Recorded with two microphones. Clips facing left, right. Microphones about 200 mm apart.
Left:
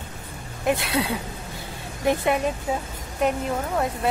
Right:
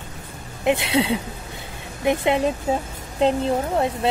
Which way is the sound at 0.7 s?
25° right (ahead or behind).